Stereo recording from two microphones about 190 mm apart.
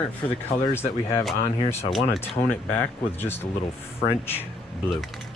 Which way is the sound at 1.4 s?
35° left (ahead or behind).